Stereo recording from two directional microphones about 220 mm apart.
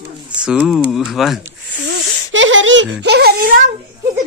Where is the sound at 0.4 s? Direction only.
5° right (ahead or behind).